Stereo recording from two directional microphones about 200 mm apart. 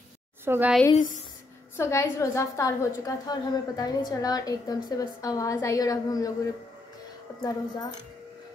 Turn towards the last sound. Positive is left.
turn(degrees=20)  # may be behind; listen again after turning